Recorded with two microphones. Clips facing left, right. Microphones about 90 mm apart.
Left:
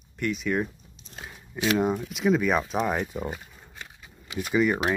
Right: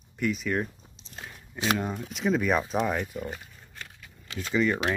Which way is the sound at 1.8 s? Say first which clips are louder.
Left 7 dB; 20° left (ahead or behind).